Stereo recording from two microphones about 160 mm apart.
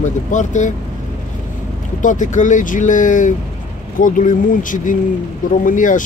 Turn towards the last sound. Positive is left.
turn(degrees=55)  # may be behind; listen again after turning